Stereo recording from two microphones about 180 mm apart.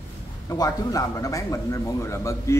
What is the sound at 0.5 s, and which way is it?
A man's voice, 20° left (ahead or behind).